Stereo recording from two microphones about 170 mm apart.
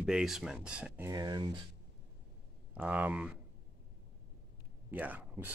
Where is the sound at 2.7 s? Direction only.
10° right (ahead or behind).